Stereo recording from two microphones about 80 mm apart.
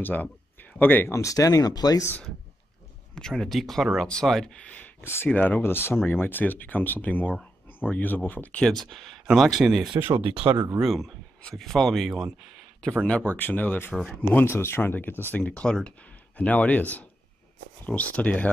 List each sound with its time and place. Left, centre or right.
0.0 s speech: left
1.1 s speech: left
3.2 s speech: centre
5.0 s speech: left
5.3 s speech: left; by 9.8 s centre
9.9 s speech: right
10.8 s speech: centre